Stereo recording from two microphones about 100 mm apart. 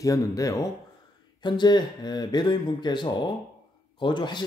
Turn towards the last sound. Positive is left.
turn(degrees=50)  # may be behind; listen again after turning